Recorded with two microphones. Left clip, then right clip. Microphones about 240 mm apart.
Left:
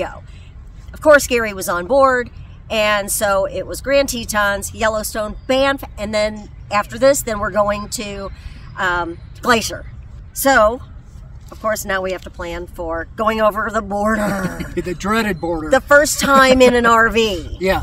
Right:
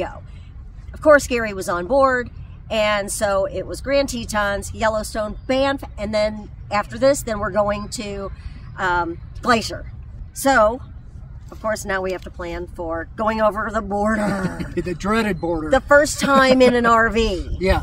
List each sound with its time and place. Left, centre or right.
0.9 s speech: left
14.8 s speech: centre
15.7 s speech: left
17.4 s speech: centre